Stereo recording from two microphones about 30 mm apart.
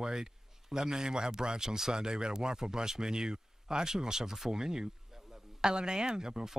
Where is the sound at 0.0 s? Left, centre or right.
Right.